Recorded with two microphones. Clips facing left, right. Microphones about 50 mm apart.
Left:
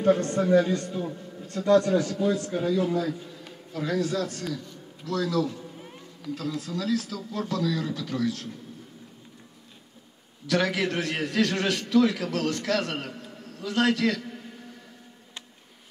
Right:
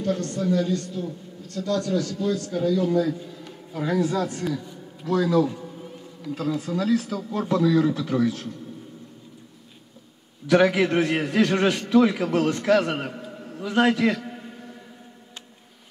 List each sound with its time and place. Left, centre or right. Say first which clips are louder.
0.0 s a man's voice: left 3 dB; left
3.0 s a man's voice: right 5 dB; centre
3.7 s a man's voice: right 3 dB; centre
10.4 s a man's voice: right 7 dB; right